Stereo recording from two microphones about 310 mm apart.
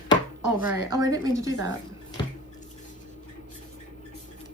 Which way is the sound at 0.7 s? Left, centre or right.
Centre.